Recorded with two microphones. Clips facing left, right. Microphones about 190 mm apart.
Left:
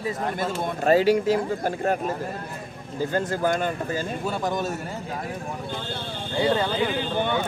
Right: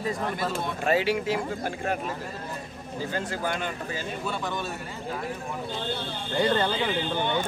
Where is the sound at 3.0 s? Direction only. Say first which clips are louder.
Left 6 dB; 45° left (ahead or behind).